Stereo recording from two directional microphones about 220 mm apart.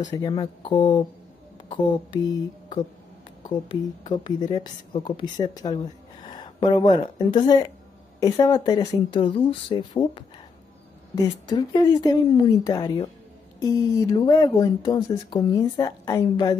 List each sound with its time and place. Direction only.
0.1 s speech: 15° left (ahead or behind)
4.2 s speech: 20° left (ahead or behind)